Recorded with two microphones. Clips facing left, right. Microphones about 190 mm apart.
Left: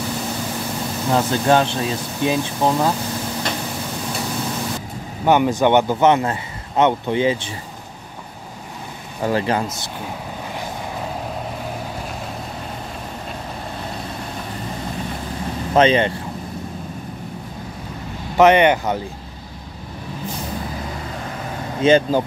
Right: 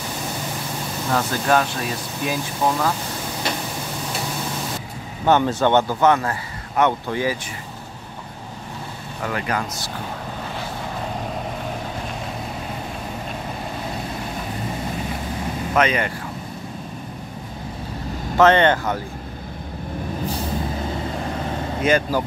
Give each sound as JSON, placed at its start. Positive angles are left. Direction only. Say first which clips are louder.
{"t": 1.1, "sound": "speech", "louder": "left 3 dB", "side_deg": 25}
{"t": 5.2, "sound": "speech", "louder": "left 2 dB", "side_deg": 15}
{"t": 9.2, "sound": "speech", "louder": "left 5 dB", "side_deg": 30}
{"t": 15.7, "sound": "speech", "louder": "left 6 dB", "side_deg": 30}
{"t": 18.4, "sound": "speech", "louder": "left 2 dB", "side_deg": 15}
{"t": 21.8, "sound": "speech", "louder": "left 5 dB", "side_deg": 25}